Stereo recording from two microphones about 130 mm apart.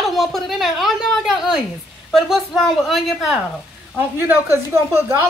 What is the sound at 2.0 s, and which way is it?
Speech, centre (ahead or behind).